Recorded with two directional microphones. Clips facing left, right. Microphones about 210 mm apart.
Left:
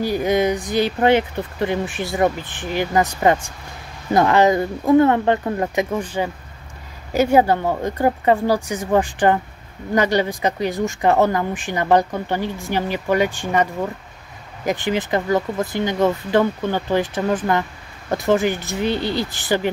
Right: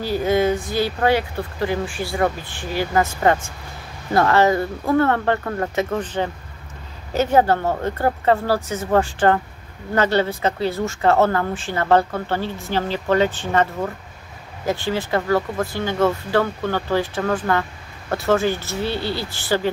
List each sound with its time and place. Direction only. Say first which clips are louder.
0.0 s speech: left 1 dB; 15° left (ahead or behind)